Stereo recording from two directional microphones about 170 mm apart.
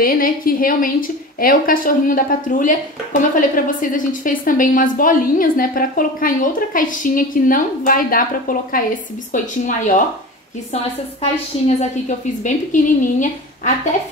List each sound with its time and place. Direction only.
0.0 s a woman's voice: 55° left (ahead or behind)
11.6 s a woman's voice: 45° left (ahead or behind)